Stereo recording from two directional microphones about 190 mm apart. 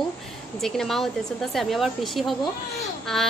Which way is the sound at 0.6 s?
Centre (ahead or behind).